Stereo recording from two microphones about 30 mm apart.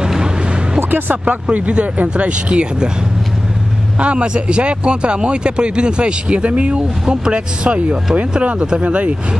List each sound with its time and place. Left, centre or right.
1.2 s speech: right
2.0 s speech: right
4.0 s speech: right
7.1 s speech: right
8.8 s speech: right